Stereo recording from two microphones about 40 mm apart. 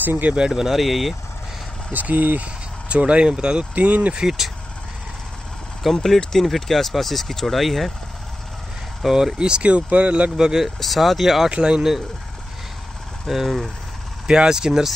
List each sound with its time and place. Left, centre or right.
0.0 s speech: right
0.5 s speech: centre
1.9 s speech: right
2.4 s speech: right
3.7 s speech: right
4.2 s speech: centre
6.0 s speech: centre
9.0 s speech: centre
9.4 s speech: right
10.3 s speech: centre
10.8 s speech: centre
11.5 s speech: right
13.3 s speech: centre
14.2 s speech: centre